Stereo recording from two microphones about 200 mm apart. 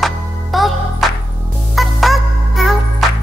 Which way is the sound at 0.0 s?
Centre (ahead or behind).